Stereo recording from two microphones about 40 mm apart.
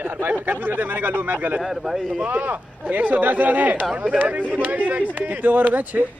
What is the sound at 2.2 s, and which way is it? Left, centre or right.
Speech, right.